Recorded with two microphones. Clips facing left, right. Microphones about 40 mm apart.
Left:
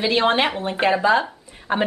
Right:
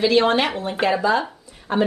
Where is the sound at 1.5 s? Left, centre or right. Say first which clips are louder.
Right 4 dB; left.